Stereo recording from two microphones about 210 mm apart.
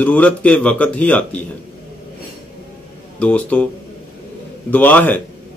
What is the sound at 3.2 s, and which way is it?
Speech, 5° left (ahead or behind).